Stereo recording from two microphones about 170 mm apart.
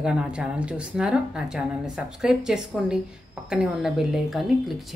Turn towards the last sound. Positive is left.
turn(degrees=0)  # may be behind; listen again after turning